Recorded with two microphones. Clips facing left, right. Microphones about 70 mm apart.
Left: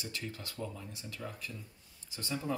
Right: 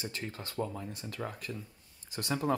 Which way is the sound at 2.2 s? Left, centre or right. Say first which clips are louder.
Right 5 dB; right.